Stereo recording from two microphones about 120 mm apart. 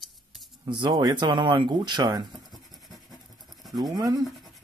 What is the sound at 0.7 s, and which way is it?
Speech, 40° right (ahead or behind).